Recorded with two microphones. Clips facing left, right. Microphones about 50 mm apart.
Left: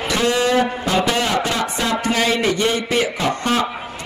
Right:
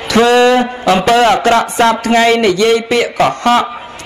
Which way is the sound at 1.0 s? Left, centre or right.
Right.